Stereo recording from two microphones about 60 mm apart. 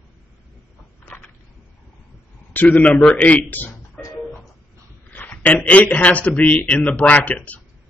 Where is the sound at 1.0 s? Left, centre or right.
Left.